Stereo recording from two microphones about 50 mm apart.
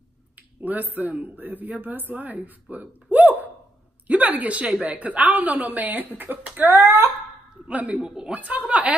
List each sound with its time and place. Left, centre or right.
0.4 s a woman's voice: right
6.6 s speech: right
7.6 s a woman's voice: right
8.0 s a woman's voice: centre
8.4 s a woman's voice: right